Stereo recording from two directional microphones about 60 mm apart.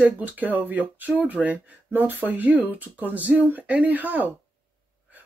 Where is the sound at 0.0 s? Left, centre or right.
Right.